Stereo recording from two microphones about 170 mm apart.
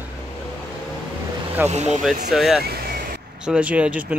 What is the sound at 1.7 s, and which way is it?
Speech, 40° right (ahead or behind).